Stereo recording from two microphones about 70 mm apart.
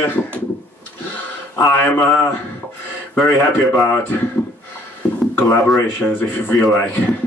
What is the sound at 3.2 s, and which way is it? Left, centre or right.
Speech, left.